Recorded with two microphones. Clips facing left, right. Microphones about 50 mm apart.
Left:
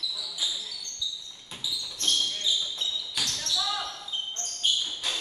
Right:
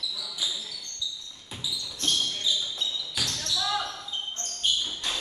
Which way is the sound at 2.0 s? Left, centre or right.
Centre.